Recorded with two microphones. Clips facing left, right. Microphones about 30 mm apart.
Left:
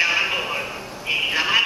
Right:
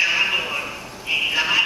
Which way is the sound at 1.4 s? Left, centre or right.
Centre.